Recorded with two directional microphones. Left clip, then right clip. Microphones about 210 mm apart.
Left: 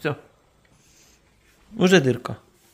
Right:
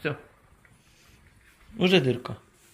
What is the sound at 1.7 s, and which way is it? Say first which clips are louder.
Speech: left 4 dB; 40° left (ahead or behind).